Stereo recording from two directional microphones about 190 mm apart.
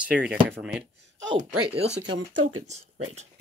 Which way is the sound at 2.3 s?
90° right.